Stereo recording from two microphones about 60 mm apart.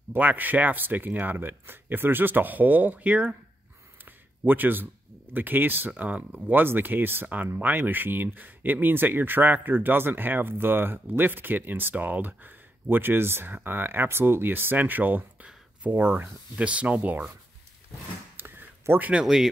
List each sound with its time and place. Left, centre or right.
0.1 s speech: right
4.0 s a sound: right
5.3 s speech: right
16.5 s speech: right
18.3 s a sound: right
19.2 s speech: centre